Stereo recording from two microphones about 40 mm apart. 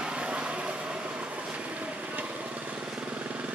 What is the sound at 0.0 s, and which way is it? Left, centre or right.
Vehicle, right.